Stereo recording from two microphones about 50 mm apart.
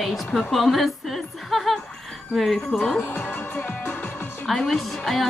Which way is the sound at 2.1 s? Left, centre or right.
Centre.